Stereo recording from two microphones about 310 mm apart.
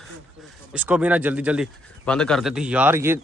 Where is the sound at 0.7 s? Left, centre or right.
Centre.